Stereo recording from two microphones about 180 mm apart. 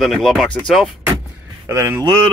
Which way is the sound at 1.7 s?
15° right (ahead or behind).